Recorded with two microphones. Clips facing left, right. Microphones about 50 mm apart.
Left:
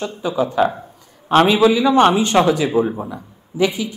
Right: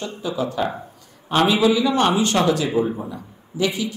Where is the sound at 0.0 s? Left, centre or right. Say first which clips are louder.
Left 5 dB; left.